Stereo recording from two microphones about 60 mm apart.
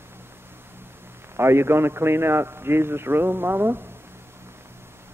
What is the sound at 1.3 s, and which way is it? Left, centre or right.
A man's voice, right.